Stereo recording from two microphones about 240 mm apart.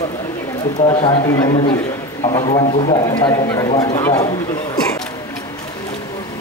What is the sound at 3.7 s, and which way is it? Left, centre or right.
Speech, left.